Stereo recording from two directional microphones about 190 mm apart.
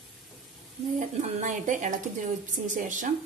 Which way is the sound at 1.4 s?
40° right (ahead or behind).